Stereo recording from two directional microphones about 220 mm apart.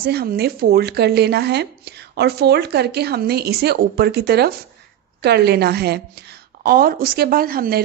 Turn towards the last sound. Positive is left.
turn(degrees=-40)  # may be behind; listen again after turning